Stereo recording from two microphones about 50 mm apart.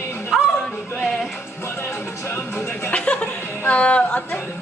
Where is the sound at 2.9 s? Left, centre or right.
Left.